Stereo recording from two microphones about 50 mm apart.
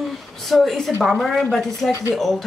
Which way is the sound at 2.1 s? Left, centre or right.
Centre.